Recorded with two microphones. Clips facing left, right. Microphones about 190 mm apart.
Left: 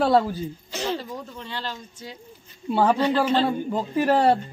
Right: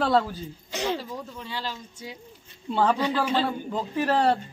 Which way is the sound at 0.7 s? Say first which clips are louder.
Right 1 dB; 15° right (ahead or behind).